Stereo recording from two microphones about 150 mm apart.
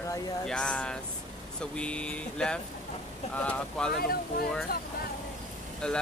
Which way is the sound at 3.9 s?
85° left.